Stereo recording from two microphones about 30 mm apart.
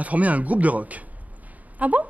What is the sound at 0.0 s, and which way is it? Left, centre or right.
A woman's voice, right.